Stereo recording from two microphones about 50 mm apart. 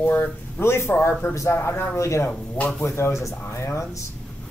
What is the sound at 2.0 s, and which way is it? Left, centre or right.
Speech, left.